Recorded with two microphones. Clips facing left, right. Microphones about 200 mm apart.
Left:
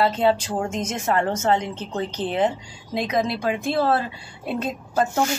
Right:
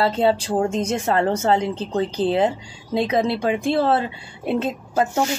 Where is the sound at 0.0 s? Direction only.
30° right (ahead or behind).